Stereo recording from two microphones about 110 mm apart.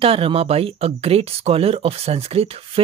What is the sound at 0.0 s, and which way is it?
Speech, 60° right (ahead or behind).